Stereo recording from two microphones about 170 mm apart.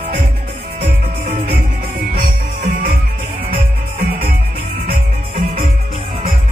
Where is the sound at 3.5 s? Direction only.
60° right (ahead or behind).